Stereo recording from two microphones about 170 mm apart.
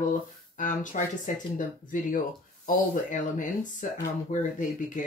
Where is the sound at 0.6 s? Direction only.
45° left (ahead or behind).